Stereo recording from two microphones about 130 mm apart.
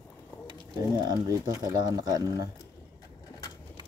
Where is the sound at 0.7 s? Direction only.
30° right (ahead or behind).